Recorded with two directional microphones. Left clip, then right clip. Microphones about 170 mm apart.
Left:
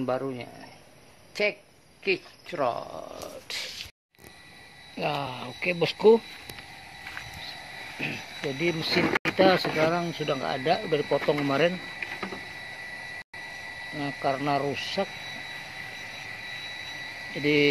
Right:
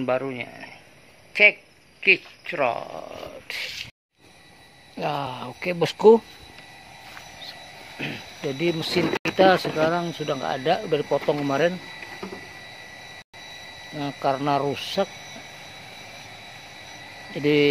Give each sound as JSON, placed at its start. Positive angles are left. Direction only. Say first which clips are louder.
{"t": 0.0, "sound": "speech", "louder": "right 4 dB", "side_deg": -5}
{"t": 2.0, "sound": "speech", "louder": "right 9 dB", "side_deg": -5}
{"t": 4.9, "sound": "speech", "louder": "right 2 dB", "side_deg": -15}
{"t": 8.0, "sound": "speech", "louder": "right 2 dB", "side_deg": -15}
{"t": 11.1, "sound": "speech", "louder": "right 2 dB", "side_deg": 0}
{"t": 13.9, "sound": "speech", "louder": "right 4 dB", "side_deg": -15}
{"t": 17.3, "sound": "frog", "louder": "right 3 dB", "side_deg": -20}